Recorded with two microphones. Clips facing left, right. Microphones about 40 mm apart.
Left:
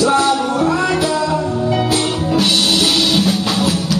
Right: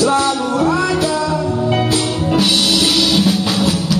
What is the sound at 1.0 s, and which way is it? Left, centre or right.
Music, left.